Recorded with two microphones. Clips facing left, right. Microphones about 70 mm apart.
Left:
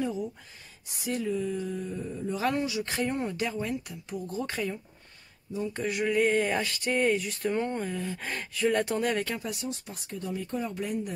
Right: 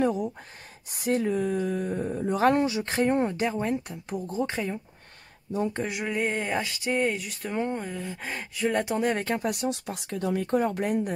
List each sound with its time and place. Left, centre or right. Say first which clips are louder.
0.0 s speech: right 6 dB; right
2.4 s speech: right 7 dB; right
4.4 s speech: right 3 dB; right
5.9 s speech: left 3 dB; centre
9.4 s speech: right 7 dB; right